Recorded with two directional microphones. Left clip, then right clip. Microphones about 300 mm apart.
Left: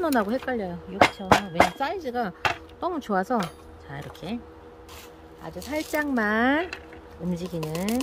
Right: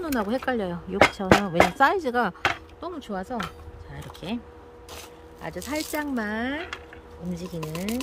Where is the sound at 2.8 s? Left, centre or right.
Centre.